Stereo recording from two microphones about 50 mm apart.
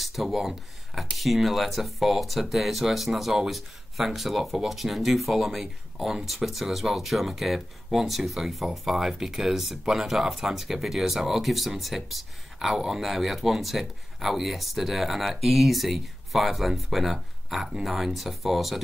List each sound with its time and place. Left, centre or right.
0.0 s speech: centre